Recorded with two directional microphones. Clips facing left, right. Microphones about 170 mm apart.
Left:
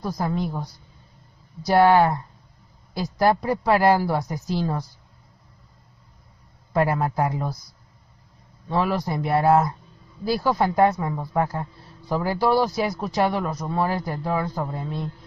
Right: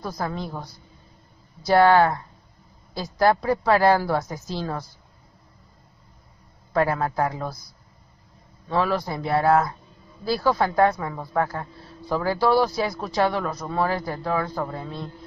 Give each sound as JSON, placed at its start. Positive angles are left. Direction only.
{"t": 0.0, "sound": "speech", "side_deg": 15}
{"t": 6.7, "sound": "speech", "side_deg": 10}
{"t": 8.6, "sound": "speech", "side_deg": 10}